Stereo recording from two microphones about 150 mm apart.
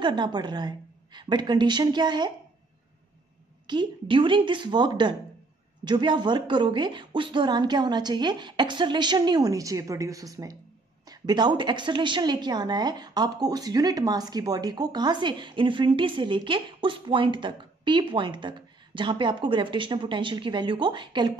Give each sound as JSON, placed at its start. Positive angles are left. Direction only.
{"t": 0.0, "sound": "a woman's voice", "side_deg": -30}
{"t": 3.6, "sound": "a woman's voice", "side_deg": -30}